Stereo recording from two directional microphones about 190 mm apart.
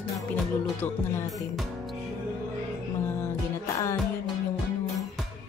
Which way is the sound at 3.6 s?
15° left (ahead or behind).